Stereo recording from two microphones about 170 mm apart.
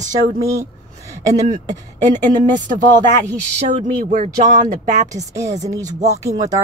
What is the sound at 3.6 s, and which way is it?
Speech, 45° right (ahead or behind).